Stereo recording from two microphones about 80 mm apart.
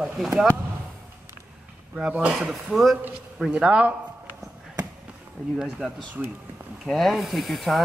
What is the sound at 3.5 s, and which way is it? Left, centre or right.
Speech, centre.